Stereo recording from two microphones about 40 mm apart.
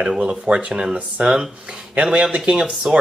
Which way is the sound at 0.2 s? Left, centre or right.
Right.